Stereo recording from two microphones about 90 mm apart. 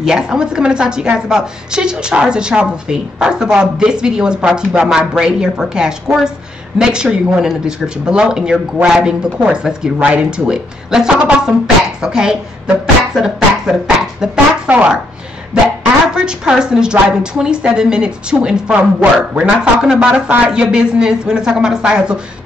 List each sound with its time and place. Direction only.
0.0 s a woman's voice: 5° right (ahead or behind)
16.3 s a woman's voice: 10° right (ahead or behind)